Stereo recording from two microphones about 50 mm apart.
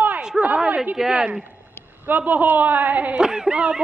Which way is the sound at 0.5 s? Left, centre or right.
Right.